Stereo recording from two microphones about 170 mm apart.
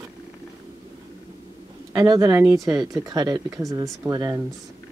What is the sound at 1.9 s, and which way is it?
Speech, 20° right (ahead or behind).